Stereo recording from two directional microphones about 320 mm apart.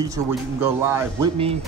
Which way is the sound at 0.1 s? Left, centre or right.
Centre.